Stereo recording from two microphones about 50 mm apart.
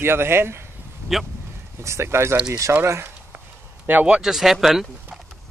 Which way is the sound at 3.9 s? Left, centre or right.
Right.